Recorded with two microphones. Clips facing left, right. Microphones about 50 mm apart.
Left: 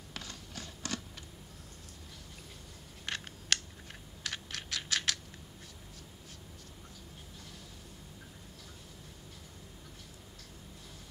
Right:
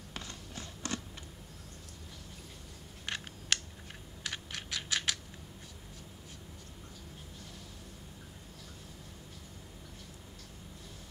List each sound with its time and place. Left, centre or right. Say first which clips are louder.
0.1 s a sound: even; right
3.5 s typing: even; right
4.2 s computer keyboard: even; centre